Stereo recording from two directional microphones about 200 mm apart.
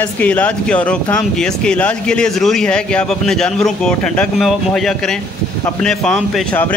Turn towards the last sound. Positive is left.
turn(degrees=0)  # may be behind; listen again after turning